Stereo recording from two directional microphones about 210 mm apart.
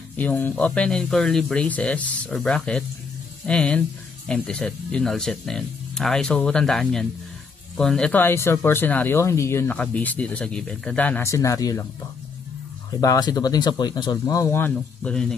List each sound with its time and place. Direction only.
0.1 s speech: 5° left (ahead or behind)
13.0 s speech: 15° left (ahead or behind)